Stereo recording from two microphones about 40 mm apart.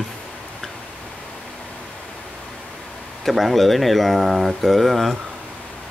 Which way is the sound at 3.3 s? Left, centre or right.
Centre.